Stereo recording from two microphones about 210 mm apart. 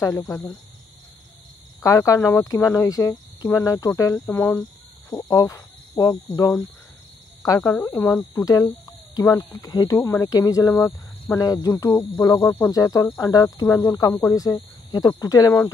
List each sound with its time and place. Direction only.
0.0 s speech: 15° left (ahead or behind)
1.8 s speech: 15° left (ahead or behind)